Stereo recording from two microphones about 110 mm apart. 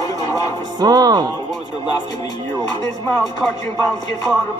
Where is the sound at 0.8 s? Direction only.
35° right (ahead or behind).